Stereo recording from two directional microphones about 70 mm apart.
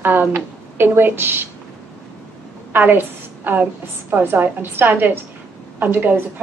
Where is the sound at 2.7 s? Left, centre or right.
Right.